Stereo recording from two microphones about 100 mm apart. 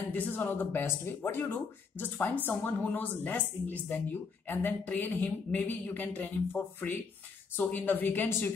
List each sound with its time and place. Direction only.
0.1 s speech: 20° left (ahead or behind)